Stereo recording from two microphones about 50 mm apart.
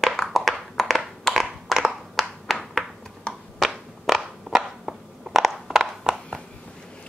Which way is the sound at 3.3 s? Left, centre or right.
Centre.